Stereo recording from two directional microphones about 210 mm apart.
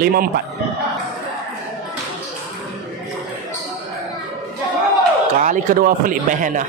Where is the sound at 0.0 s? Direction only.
45° right (ahead or behind).